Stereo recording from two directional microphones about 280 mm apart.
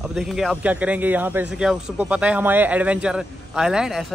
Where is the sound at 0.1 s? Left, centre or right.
Centre.